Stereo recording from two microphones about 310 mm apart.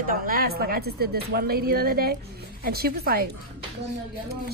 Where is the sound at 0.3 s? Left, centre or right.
Right.